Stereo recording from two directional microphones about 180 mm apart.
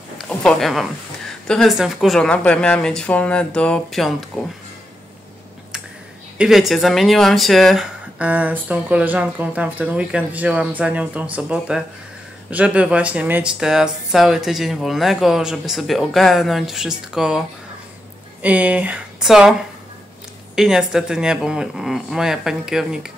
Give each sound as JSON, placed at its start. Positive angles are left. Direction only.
{"t": 0.2, "sound": "a sound", "side_deg": 5}
{"t": 1.5, "sound": "speech", "side_deg": 0}
{"t": 6.3, "sound": "speech", "side_deg": -5}
{"t": 18.4, "sound": "speech", "side_deg": -10}
{"t": 20.5, "sound": "speech", "side_deg": 0}